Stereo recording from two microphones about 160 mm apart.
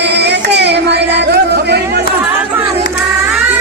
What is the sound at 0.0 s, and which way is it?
Carnatic music, 90° right.